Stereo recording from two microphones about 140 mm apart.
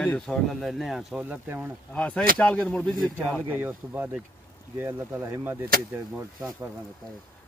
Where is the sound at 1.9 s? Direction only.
10° left (ahead or behind).